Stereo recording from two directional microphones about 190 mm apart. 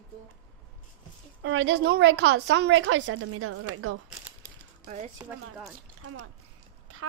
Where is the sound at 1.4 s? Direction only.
75° right (ahead or behind); by 3.9 s 90° right.